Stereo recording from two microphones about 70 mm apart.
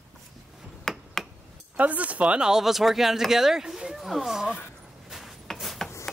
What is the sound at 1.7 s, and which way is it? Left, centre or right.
Speech, right.